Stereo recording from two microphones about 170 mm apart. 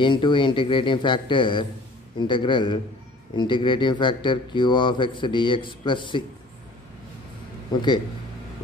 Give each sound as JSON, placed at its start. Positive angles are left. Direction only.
{"t": 0.0, "sound": "a man's voice", "side_deg": 30}
{"t": 7.7, "sound": "a man's voice", "side_deg": 25}